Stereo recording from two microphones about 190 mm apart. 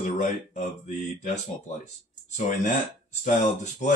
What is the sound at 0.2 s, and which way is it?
Speech, 40° left (ahead or behind).